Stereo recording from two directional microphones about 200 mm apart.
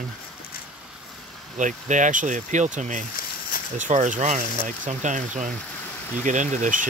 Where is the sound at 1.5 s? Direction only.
40° right (ahead or behind).